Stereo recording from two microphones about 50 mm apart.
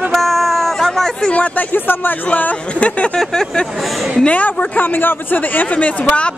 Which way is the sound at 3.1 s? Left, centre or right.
Centre.